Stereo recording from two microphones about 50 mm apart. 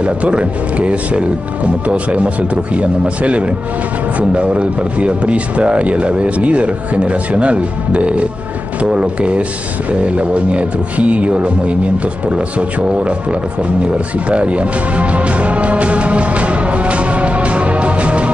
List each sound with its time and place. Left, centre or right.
0.0 s speech: right